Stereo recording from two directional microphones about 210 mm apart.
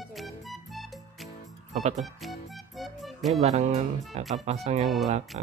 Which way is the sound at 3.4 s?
35° right (ahead or behind).